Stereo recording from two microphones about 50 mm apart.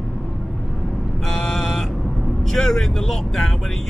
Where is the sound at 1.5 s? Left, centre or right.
Centre.